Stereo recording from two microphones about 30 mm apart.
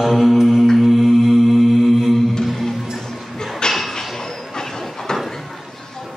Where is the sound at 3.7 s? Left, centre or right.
Centre.